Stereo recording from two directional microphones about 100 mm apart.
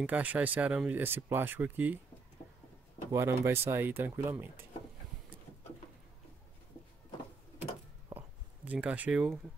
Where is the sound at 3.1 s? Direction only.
30° right (ahead or behind).